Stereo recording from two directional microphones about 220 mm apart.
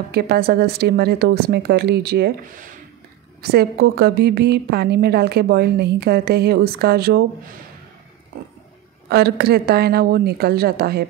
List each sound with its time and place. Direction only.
0.1 s a woman's voice: 45° right (ahead or behind)
9.1 s a woman's voice: 45° right (ahead or behind)